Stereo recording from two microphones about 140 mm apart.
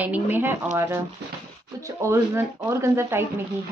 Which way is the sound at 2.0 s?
20° right (ahead or behind).